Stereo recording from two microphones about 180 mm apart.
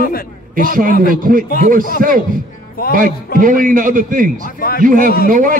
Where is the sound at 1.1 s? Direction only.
50° right (ahead or behind).